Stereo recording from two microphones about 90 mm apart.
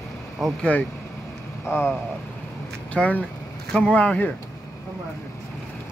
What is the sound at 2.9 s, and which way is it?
Speech, 15° left (ahead or behind).